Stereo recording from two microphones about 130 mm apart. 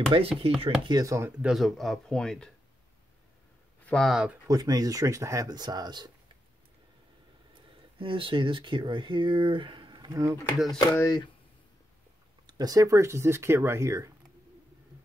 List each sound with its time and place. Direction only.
0.1 s speech: 45° right (ahead or behind)
1.0 s speech: 20° right (ahead or behind)
1.4 s speech: centre (ahead or behind)
3.8 s speech: centre (ahead or behind)
4.5 s speech: 30° right (ahead or behind)
8.0 s speech: 40° right (ahead or behind)
10.8 s speech: 25° left (ahead or behind)
12.4 s speech: 30° right (ahead or behind)